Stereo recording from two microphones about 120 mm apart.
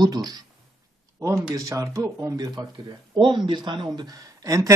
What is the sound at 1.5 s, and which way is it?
Speech, 25° right (ahead or behind).